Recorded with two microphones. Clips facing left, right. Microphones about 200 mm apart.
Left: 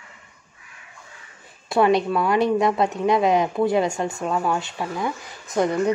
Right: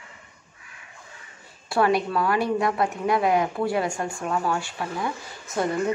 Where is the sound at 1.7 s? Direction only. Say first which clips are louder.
Left 4 dB; 20° left (ahead or behind).